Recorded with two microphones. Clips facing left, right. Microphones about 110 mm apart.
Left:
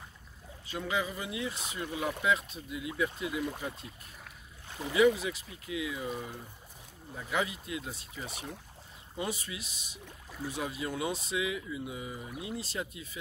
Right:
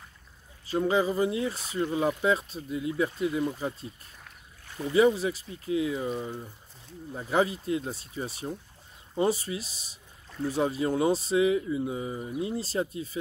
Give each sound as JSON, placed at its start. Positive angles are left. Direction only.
{"t": 0.7, "sound": "speech", "side_deg": -35}
{"t": 4.9, "sound": "speech", "side_deg": -35}